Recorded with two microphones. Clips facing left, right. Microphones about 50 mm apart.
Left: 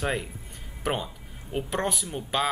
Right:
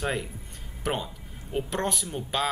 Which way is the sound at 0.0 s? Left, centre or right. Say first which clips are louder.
Left 1 dB; centre.